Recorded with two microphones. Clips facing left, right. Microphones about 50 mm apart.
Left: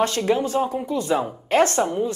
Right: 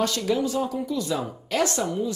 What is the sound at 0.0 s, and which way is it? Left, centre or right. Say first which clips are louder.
Speech: left 3 dB; left.